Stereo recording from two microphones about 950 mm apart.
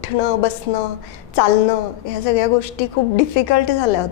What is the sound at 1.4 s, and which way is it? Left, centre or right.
A woman's voice, left.